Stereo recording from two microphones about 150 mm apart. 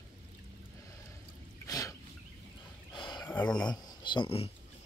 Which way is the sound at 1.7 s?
25° left (ahead or behind).